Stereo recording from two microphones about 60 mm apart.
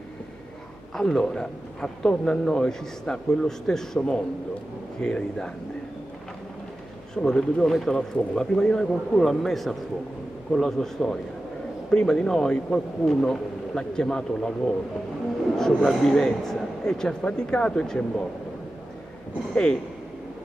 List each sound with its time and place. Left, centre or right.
0.9 s a man's voice: centre
7.2 s a man's voice: centre
19.5 s a man's voice: centre